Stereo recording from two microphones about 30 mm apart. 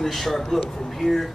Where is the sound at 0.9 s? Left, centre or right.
Centre.